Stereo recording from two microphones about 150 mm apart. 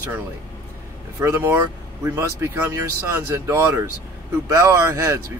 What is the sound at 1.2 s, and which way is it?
Speech, 15° right (ahead or behind).